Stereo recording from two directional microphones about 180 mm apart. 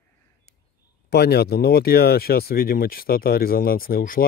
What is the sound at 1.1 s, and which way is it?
Speech, 65° left (ahead or behind).